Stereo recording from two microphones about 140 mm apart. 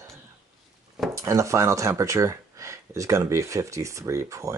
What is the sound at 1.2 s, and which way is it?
Speech, 20° right (ahead or behind).